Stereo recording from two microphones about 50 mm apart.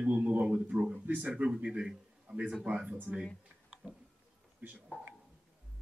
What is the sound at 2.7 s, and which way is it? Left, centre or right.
Speech, right.